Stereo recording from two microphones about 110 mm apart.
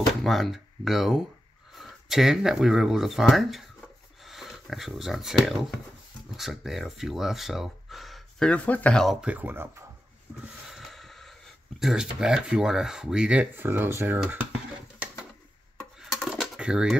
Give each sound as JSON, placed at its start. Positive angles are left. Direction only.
{"t": 0.2, "sound": "speech", "side_deg": 0}
{"t": 9.0, "sound": "speech", "side_deg": 0}
{"t": 9.3, "sound": "speech", "side_deg": -15}
{"t": 10.7, "sound": "a sound", "side_deg": 0}
{"t": 11.8, "sound": "speech", "side_deg": -5}
{"t": 13.7, "sound": "speech", "side_deg": -20}
{"t": 16.0, "sound": "a sound", "side_deg": 0}